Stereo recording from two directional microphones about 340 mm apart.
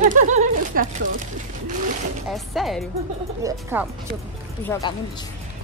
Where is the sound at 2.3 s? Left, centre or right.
Centre.